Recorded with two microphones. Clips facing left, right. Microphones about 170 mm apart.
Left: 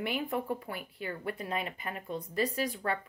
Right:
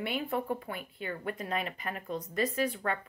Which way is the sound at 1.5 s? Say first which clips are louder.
Right 1 dB; 25° left (ahead or behind).